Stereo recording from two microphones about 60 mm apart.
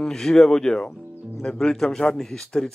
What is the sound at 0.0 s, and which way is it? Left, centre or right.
Speech, centre.